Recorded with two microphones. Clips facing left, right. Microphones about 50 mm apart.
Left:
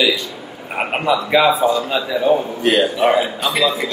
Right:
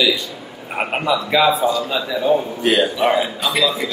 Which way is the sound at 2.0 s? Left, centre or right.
Centre.